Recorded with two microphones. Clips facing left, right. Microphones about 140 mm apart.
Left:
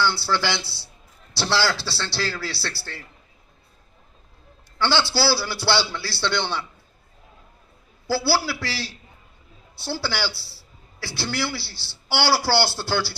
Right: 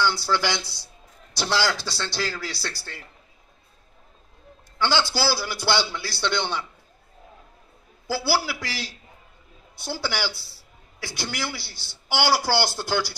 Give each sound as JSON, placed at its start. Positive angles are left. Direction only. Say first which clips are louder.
{"t": 0.0, "sound": "a man's voice", "louder": "even", "side_deg": -15}
{"t": 4.7, "sound": "a man's voice", "louder": "left 1 dB", "side_deg": -15}
{"t": 8.1, "sound": "a man's voice", "louder": "left 2 dB", "side_deg": -15}